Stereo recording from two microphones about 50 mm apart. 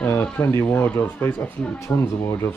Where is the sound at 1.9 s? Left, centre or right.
Left.